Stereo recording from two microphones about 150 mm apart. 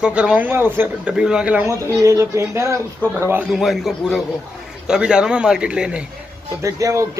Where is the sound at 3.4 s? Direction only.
Centre (ahead or behind).